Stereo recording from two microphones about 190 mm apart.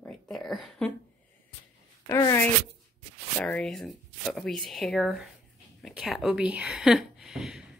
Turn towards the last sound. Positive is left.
turn(degrees=-5)  # may be behind; listen again after turning